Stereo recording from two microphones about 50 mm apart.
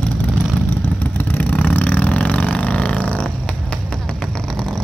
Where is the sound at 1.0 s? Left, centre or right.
Left.